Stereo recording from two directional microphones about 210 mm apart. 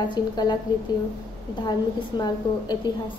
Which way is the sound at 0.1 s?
20° left (ahead or behind).